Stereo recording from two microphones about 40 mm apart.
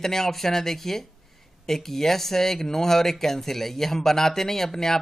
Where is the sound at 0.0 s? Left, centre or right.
Centre.